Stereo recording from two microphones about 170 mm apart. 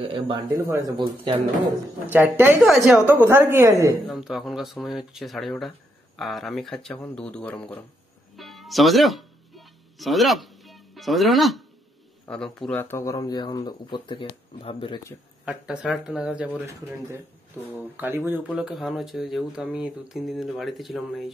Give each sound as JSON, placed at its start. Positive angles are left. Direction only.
{"t": 0.0, "sound": "speech", "side_deg": -30}
{"t": 0.5, "sound": "speech", "side_deg": -15}
{"t": 2.0, "sound": "a woman's voice", "side_deg": -10}
{"t": 2.6, "sound": "speech", "side_deg": 0}
{"t": 3.1, "sound": "a woman's voice", "side_deg": -15}
{"t": 4.0, "sound": "speech", "side_deg": 0}
{"t": 8.4, "sound": "music", "side_deg": 0}
{"t": 12.3, "sound": "a man's voice", "side_deg": 5}
{"t": 15.4, "sound": "speech", "side_deg": -5}
{"t": 17.9, "sound": "speech", "side_deg": -15}